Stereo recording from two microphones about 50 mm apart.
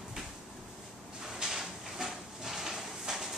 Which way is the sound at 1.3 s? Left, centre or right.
Centre.